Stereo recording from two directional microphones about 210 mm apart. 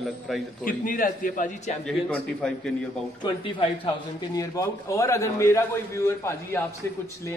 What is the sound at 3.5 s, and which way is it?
A man's voice, 25° left (ahead or behind).